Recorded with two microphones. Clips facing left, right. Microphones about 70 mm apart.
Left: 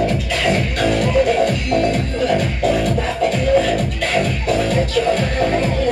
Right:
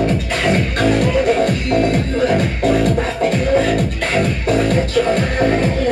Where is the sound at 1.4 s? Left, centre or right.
Centre.